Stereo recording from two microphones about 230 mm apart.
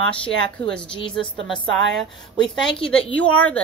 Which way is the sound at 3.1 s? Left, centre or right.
Centre.